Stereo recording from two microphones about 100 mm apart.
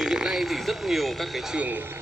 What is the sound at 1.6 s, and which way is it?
Speech, 20° right (ahead or behind).